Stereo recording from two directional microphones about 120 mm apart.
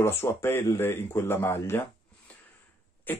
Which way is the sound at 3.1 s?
15° left (ahead or behind).